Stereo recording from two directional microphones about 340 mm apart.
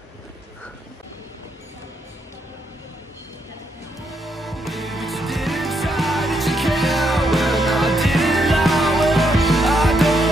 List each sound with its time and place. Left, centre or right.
4.1 s music: centre